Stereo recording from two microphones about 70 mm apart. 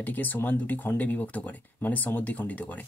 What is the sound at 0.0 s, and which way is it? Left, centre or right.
Speech, left.